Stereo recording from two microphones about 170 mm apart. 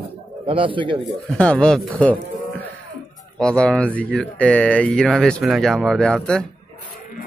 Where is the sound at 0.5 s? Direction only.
30° right (ahead or behind).